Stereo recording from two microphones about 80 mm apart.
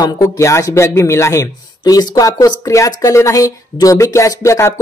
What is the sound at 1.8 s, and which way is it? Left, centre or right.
Speech, left.